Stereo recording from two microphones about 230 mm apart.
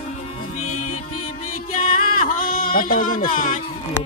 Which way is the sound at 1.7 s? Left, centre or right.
Left.